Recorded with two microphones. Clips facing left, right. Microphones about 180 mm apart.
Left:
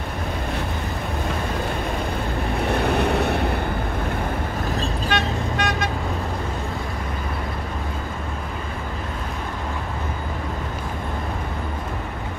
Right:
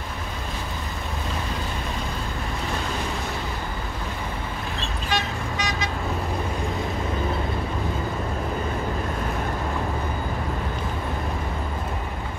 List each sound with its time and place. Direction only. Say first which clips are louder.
2.7 s vehicle: left 11 dB; 65° left (ahead or behind)
5.1 s vehicle: left 1 dB; 60° left (ahead or behind)